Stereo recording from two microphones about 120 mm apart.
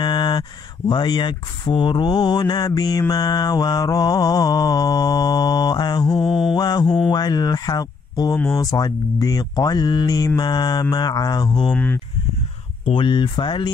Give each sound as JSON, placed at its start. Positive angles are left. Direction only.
{"t": 0.0, "sound": "speech", "side_deg": 35}
{"t": 11.7, "sound": "speech", "side_deg": 15}
{"t": 12.8, "sound": "speech", "side_deg": 45}